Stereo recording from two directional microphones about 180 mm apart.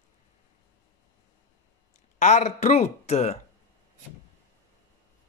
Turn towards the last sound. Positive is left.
turn(degrees=35)  # may be behind; listen again after turning